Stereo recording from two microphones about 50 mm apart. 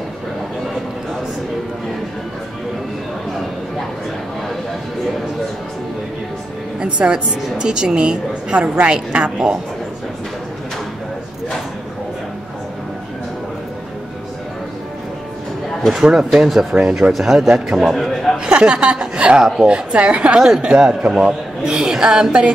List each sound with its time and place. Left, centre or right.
6.8 s a man's voice: centre
16.0 s a man's voice: centre
18.4 s a woman's voice: centre
19.4 s speech: centre
19.7 s a woman's voice: right